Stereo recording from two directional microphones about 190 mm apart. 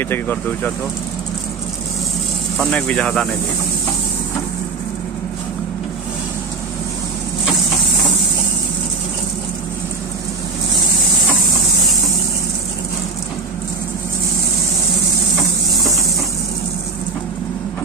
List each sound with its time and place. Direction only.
0.0 s speech: 10° left (ahead or behind)
2.5 s speech: 5° left (ahead or behind)